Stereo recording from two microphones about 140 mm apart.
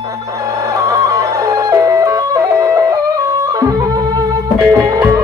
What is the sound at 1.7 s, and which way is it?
Music, 25° right (ahead or behind).